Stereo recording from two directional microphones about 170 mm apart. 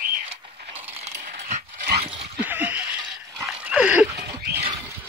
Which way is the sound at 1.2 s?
45° right (ahead or behind).